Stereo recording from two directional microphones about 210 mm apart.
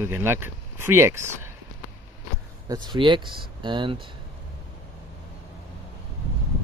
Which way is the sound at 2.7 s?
20° right (ahead or behind).